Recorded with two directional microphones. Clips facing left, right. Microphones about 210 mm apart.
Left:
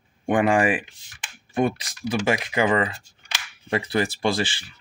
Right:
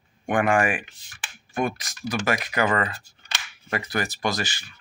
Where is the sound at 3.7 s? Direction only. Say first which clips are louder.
Left 4 dB; 30° left (ahead or behind).